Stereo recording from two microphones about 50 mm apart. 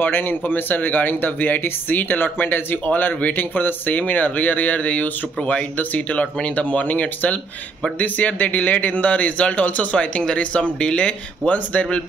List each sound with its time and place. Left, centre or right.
0.0 s a man's voice: left